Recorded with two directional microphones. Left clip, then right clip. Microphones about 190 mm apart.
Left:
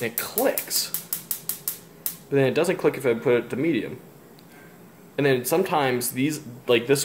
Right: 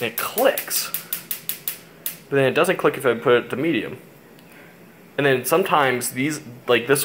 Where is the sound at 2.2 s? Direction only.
15° left (ahead or behind).